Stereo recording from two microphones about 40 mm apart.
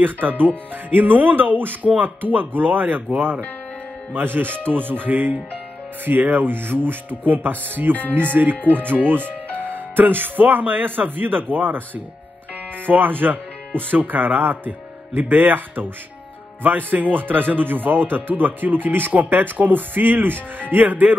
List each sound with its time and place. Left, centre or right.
0.0 s speech: right
12.8 s speech: right